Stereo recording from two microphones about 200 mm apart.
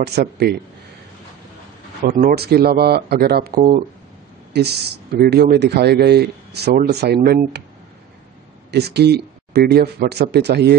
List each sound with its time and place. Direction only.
0.0 s speech: 55° right (ahead or behind)
2.0 s speech: 45° right (ahead or behind)
5.2 s speech: 55° right (ahead or behind)
8.7 s speech: 55° right (ahead or behind)